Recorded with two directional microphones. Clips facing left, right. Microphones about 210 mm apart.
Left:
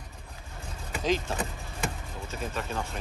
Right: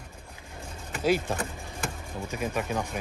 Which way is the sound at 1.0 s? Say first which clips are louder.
Right 3 dB; 10° right (ahead or behind).